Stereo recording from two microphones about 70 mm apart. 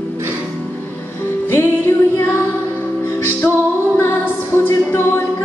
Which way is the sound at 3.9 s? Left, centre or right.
Left.